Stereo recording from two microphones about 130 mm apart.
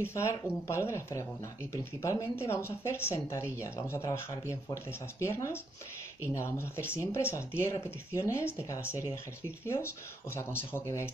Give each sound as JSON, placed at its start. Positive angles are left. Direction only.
{"t": 0.0, "sound": "speech", "side_deg": 20}